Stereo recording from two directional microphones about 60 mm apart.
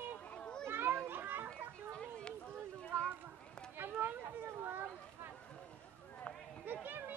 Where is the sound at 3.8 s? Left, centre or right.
Right.